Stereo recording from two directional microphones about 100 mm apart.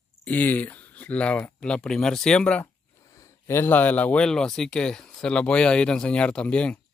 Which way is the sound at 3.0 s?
35° left (ahead or behind).